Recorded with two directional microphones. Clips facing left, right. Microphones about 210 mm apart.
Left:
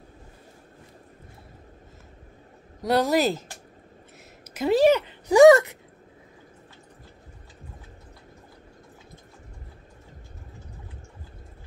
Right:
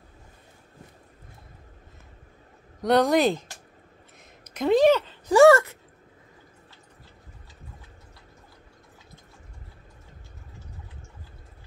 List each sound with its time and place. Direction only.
2.8 s speech: 5° left (ahead or behind)
4.6 s speech: 5° left (ahead or behind)